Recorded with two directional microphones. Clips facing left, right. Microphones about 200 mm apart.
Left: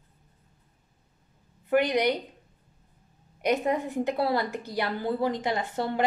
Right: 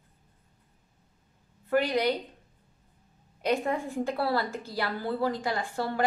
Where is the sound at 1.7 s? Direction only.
20° left (ahead or behind).